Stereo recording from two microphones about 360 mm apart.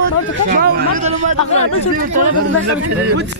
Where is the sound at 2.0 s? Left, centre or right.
Right.